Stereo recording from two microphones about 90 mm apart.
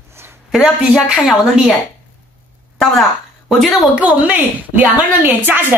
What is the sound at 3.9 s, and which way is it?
A woman's voice, 15° right (ahead or behind).